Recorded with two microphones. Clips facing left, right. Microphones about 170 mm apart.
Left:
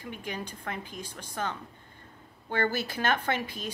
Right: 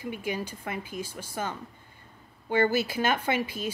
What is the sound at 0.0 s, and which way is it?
Speech, 10° right (ahead or behind).